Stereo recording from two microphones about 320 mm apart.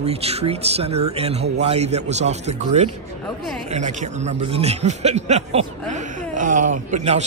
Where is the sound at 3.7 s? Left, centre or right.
Right.